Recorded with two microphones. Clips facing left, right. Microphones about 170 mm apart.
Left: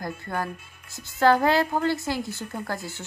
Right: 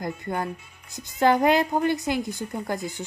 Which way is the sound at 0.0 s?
20° right (ahead or behind).